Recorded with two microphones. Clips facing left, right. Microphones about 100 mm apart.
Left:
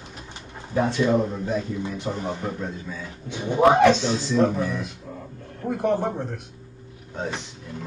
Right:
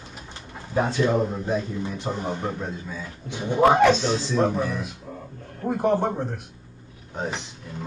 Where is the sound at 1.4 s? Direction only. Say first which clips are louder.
Even; 25° right (ahead or behind).